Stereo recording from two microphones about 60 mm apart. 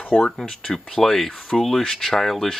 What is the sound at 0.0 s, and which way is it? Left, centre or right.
Speech, centre.